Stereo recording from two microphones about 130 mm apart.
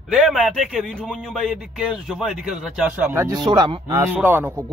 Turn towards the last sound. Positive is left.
turn(degrees=-20)  # may be behind; listen again after turning